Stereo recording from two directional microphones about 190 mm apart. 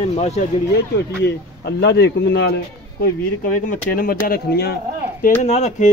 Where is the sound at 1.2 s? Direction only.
60° left (ahead or behind).